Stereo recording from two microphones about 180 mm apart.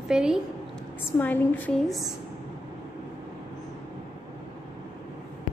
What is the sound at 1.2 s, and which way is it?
Speech, 10° left (ahead or behind).